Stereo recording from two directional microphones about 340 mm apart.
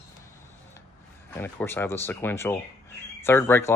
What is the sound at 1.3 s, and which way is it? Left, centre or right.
Speech, centre.